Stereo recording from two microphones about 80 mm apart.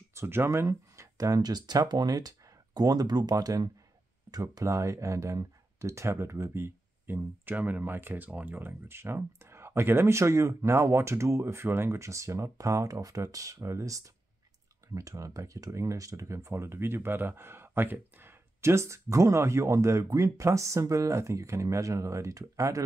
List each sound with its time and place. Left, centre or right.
0.1 s speech: right